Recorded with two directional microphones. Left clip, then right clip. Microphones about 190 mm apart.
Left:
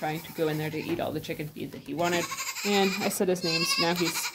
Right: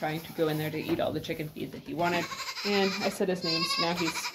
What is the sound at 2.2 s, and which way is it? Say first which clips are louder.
Speech: left 2 dB; 65° left (ahead or behind).